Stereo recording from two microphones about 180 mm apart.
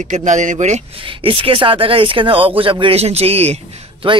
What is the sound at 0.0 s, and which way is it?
Speech, 45° right (ahead or behind).